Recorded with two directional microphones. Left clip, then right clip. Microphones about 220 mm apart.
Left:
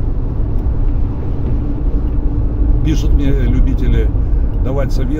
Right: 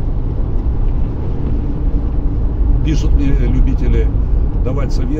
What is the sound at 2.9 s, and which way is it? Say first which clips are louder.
Vehicle: left 1 dB; 25° left (ahead or behind).